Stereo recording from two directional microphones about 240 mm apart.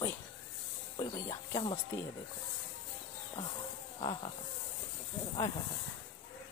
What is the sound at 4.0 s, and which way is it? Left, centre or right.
Speech, left.